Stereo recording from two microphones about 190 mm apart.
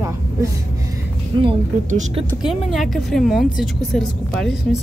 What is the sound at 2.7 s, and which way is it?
Speech, centre (ahead or behind).